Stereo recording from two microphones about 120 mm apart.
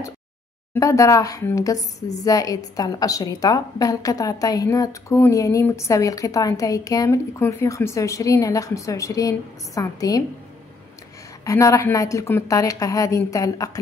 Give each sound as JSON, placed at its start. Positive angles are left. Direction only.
{"t": 0.7, "sound": "a woman's voice", "side_deg": 25}
{"t": 11.4, "sound": "speech", "side_deg": 25}